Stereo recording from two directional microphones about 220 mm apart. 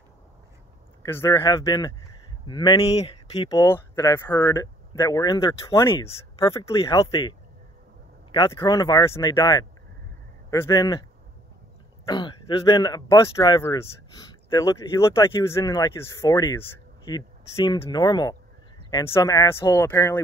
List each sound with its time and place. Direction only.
1.0 s speech: 15° left (ahead or behind)
12.1 s speech: 20° left (ahead or behind)